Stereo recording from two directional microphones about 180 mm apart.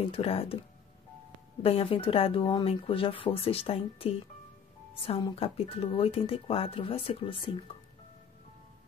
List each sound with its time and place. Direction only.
0.0 s speech: 30° left (ahead or behind)
1.6 s speech: 30° left (ahead or behind)